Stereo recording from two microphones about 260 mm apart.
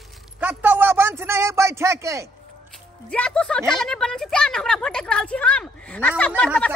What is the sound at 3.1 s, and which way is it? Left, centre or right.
A woman's voice, centre.